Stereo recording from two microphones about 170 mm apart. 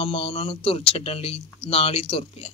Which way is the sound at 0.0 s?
35° left (ahead or behind).